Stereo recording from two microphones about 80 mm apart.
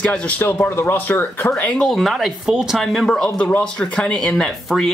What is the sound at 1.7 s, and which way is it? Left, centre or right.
Speech, centre.